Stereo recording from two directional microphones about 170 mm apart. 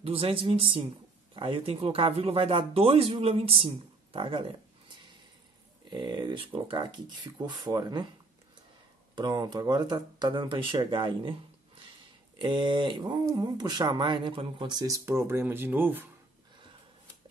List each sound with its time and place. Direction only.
0.0 s speech: 30° right (ahead or behind)
5.9 s speech: 25° right (ahead or behind)
9.1 s speech: 25° right (ahead or behind)
12.4 s speech: 25° right (ahead or behind); by 16.1 s 10° right (ahead or behind)